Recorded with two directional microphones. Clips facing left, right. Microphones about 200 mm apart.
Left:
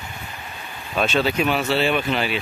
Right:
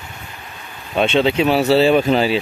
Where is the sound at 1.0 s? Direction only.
25° right (ahead or behind).